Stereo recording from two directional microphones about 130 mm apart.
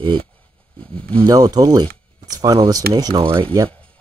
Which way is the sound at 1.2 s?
30° right (ahead or behind).